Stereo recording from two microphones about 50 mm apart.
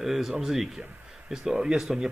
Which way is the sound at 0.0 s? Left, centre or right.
Centre.